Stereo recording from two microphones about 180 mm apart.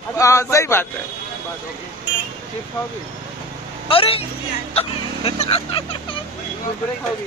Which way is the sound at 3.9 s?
30° left (ahead or behind).